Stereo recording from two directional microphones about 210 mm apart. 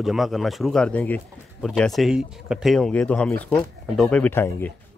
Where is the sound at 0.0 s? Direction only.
Centre (ahead or behind).